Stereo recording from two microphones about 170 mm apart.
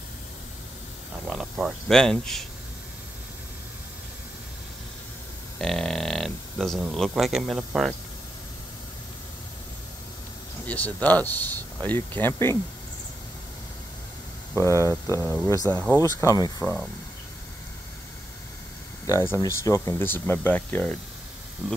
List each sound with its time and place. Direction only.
1.2 s speech: 5° right (ahead or behind)
5.6 s speech: centre (ahead or behind)
10.7 s speech: 10° left (ahead or behind)
14.6 s speech: 15° left (ahead or behind)
16.6 s speech: 5° left (ahead or behind)
19.0 s speech: 15° left (ahead or behind)
21.6 s speech: 5° right (ahead or behind)